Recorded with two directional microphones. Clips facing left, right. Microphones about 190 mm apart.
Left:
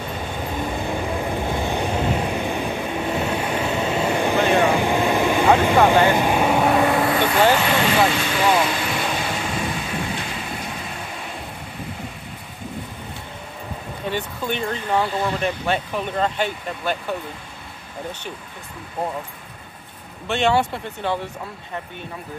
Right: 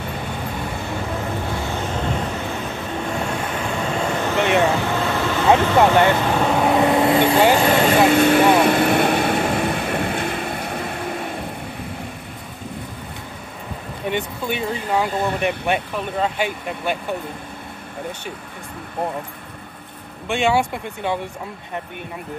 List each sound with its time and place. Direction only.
0.7 s vehicle: 15° left (ahead or behind)
3.7 s vehicle: 20° left (ahead or behind)
6.7 s vehicle: 20° right (ahead or behind)
7.5 s vehicle: 35° right (ahead or behind); by 10.8 s 55° right (ahead or behind)
14.5 s speech: 10° right (ahead or behind)
20.2 s speech: 10° right (ahead or behind)